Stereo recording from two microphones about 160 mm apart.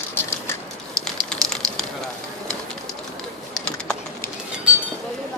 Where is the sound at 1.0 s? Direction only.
5° left (ahead or behind).